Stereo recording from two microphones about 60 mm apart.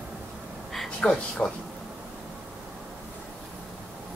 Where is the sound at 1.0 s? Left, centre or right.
Centre.